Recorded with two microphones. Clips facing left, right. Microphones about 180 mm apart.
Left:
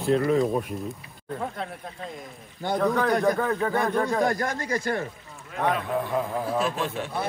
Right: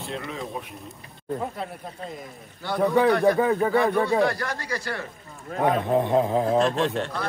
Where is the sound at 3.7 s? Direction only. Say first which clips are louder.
Right 3 dB; 45° left (ahead or behind).